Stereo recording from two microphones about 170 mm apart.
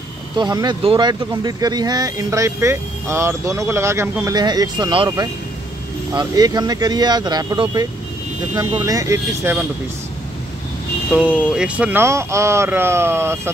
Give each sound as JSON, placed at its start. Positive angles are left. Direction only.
{"t": 0.4, "sound": "speech", "side_deg": -25}
{"t": 11.1, "sound": "speech", "side_deg": -5}